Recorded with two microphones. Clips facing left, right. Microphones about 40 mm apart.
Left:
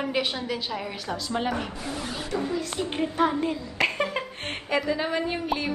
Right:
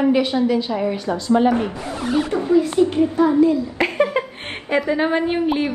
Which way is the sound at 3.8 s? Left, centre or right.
Centre.